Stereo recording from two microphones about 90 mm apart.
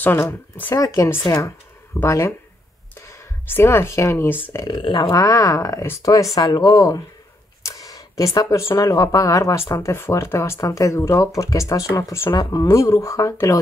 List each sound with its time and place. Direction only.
0.0 s speech: 20° left (ahead or behind)
0.7 s speech: 40° left (ahead or behind)
3.4 s speech: 25° left (ahead or behind)
4.6 s speech: 65° left (ahead or behind)
5.1 s speech: 40° left (ahead or behind)
7.6 s a sound: 40° left (ahead or behind)
8.4 s speech: 45° left (ahead or behind)
9.8 s speech: 25° left (ahead or behind)
12.3 s speech: 50° left (ahead or behind)
12.6 s speech: 35° left (ahead or behind)